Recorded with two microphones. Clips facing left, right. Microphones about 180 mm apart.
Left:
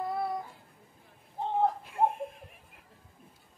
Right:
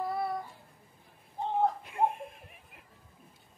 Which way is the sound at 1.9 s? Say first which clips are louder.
Left 2 dB; centre (ahead or behind).